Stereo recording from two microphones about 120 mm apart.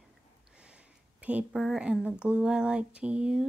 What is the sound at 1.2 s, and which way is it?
Speech, 5° right (ahead or behind).